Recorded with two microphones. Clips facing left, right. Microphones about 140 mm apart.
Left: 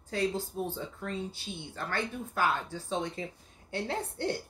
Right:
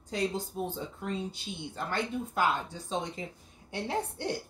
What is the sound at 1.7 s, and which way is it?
Speech, 15° right (ahead or behind).